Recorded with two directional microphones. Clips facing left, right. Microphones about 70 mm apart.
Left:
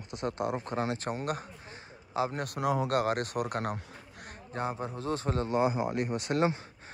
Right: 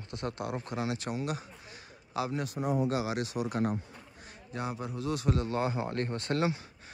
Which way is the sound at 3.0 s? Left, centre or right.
Left.